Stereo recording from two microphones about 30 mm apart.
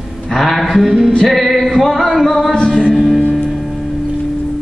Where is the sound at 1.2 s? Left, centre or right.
Centre.